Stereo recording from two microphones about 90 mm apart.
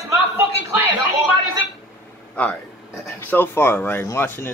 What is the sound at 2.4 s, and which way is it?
Speech, 15° left (ahead or behind).